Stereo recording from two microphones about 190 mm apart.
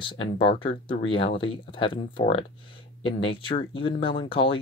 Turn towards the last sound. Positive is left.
turn(degrees=25)  # may be behind; listen again after turning